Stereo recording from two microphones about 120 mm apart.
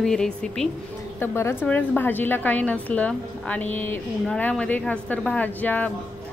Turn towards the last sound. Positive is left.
turn(degrees=15)  # may be behind; listen again after turning